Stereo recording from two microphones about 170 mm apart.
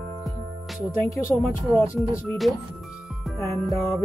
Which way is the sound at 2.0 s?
Centre (ahead or behind).